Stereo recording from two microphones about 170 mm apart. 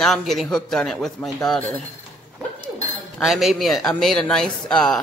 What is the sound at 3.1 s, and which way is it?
A man's voice, centre (ahead or behind).